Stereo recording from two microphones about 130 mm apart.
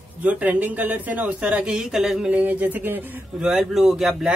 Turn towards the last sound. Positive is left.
turn(degrees=0)  # may be behind; listen again after turning